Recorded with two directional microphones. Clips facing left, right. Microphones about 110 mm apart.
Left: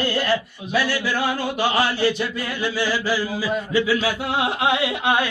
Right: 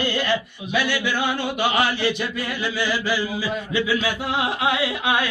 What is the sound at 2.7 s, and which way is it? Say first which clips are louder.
Music: left 1 dB; 40° left (ahead or behind).